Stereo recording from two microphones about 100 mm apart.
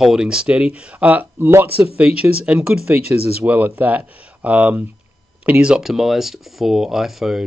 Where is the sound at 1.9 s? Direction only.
10° right (ahead or behind).